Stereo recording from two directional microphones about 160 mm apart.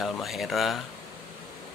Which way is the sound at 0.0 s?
Centre (ahead or behind).